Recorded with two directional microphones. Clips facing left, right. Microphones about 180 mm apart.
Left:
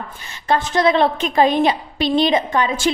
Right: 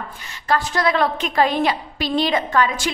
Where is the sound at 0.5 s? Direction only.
20° left (ahead or behind).